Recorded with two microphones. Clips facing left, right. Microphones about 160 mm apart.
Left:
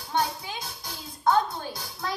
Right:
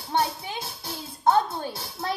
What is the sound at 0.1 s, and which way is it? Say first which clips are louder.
Music: right 2 dB; 25° right (ahead or behind).